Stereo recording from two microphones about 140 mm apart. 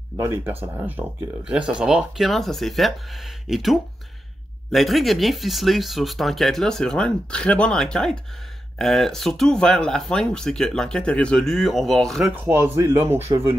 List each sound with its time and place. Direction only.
0.2 s speech: 20° right (ahead or behind); by 12.3 s 5° left (ahead or behind)
12.3 s speech: 15° right (ahead or behind)